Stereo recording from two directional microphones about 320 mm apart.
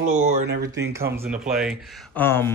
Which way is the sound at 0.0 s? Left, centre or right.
Right.